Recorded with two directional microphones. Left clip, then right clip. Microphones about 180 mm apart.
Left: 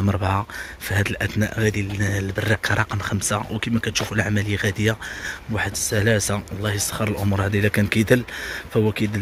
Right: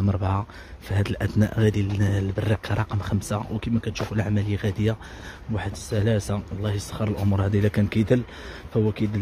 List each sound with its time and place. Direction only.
0.0 s speech: centre (ahead or behind)
0.9 s speech: 15° right (ahead or behind)
2.3 s speech: 5° right (ahead or behind)